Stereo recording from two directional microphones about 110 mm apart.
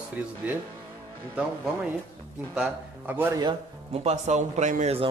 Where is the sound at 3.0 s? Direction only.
20° right (ahead or behind).